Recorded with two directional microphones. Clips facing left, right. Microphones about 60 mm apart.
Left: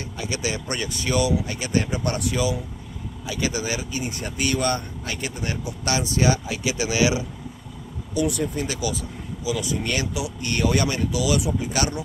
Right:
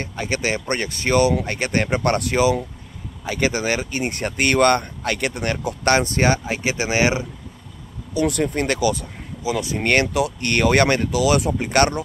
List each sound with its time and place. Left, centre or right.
0.0 s speech: right
3.3 s speech: right
8.1 s speech: right
9.4 s speech: right